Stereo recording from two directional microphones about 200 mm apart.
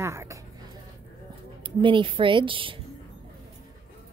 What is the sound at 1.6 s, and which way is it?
Speech, 25° right (ahead or behind).